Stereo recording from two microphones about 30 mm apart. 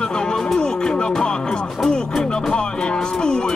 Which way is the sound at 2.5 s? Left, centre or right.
Left.